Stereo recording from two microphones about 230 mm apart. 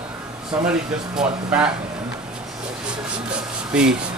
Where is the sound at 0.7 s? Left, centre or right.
Centre.